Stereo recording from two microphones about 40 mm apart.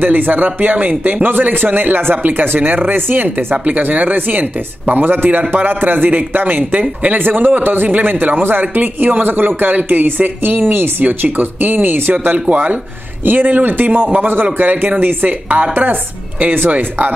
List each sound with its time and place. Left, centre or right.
0.0 s speech: right
3.6 s speech: right
12.4 s speech: right